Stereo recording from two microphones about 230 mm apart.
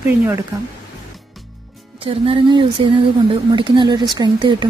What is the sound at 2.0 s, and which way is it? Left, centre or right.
Speech, right.